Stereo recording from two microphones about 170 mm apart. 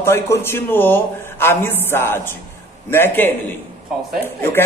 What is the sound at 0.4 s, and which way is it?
A man's voice, 15° left (ahead or behind).